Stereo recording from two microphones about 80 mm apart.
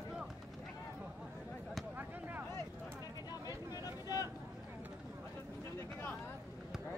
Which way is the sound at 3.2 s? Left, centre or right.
Left.